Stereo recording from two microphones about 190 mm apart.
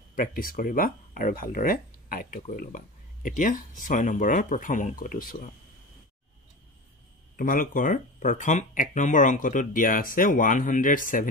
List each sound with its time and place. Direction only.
0.1 s speech: 45° left (ahead or behind)
7.3 s speech: 45° left (ahead or behind)